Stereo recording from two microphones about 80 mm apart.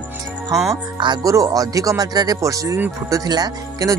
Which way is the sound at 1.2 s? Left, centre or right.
Right.